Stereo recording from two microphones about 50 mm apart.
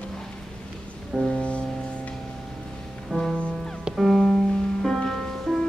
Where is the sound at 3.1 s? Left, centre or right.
Centre.